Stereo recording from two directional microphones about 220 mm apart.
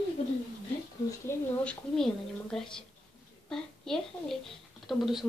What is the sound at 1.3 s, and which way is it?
Speech, 5° left (ahead or behind).